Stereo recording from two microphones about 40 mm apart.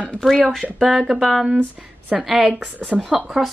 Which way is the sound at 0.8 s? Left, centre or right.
Centre.